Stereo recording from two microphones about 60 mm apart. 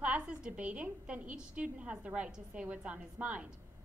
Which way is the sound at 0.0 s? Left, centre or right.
Centre.